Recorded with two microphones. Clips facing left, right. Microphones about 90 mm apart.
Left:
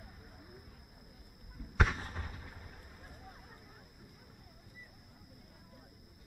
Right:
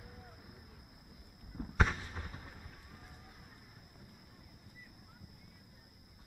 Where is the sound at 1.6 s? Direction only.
45° right (ahead or behind).